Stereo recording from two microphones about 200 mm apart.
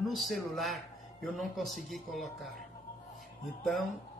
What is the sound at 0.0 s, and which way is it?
A man's voice, centre (ahead or behind).